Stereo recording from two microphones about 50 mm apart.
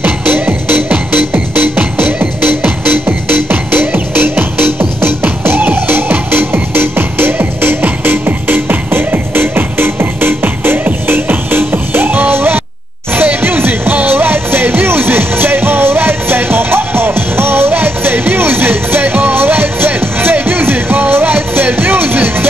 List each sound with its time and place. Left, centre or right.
0.0 s music: right
2.4 s music: right